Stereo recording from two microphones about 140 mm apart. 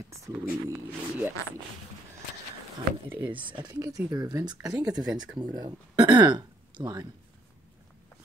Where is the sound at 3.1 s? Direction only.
15° right (ahead or behind).